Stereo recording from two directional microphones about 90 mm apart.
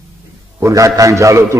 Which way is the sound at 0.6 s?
35° right (ahead or behind).